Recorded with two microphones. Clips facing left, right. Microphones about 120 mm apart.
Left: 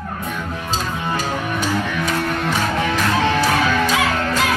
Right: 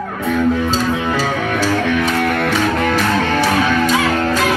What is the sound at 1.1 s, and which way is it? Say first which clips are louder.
Music: right 4 dB; 80° right.